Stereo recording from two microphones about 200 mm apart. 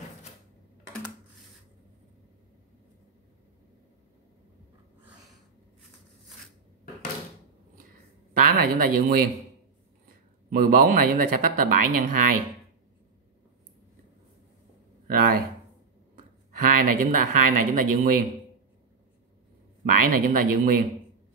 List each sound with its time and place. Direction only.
8.3 s speech: 45° right (ahead or behind)
15.0 s speech: 45° right (ahead or behind)
19.9 s speech: 45° right (ahead or behind)